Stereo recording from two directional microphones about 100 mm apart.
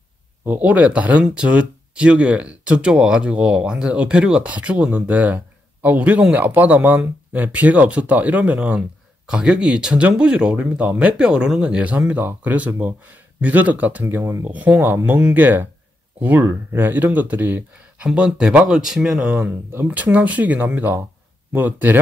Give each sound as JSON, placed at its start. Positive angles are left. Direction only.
{"t": 0.5, "sound": "speech", "side_deg": -15}
{"t": 19.2, "sound": "speech", "side_deg": -20}